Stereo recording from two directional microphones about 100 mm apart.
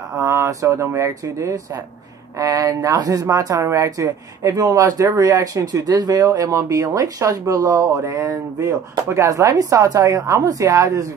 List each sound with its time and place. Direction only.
0.2 s speech: 30° right (ahead or behind)